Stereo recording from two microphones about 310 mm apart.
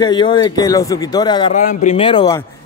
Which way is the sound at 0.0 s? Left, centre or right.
Centre.